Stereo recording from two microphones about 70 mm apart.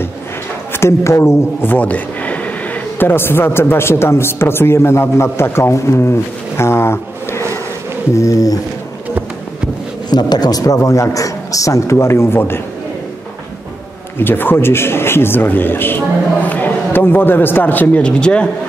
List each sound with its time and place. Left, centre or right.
0.7 s a man's voice: left
1.7 s speech: left
8.1 s a man's voice: left
10.0 s a man's voice: left
14.2 s a man's voice: left; by 18.5 s centre